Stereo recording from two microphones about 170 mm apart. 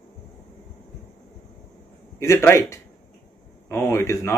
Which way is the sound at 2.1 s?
15° left (ahead or behind).